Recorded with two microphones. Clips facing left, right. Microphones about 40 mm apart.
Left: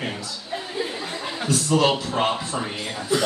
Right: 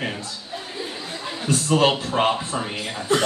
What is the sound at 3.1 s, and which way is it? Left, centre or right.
Speech, right.